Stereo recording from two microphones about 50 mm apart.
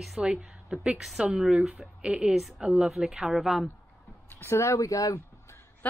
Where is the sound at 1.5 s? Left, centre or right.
Right.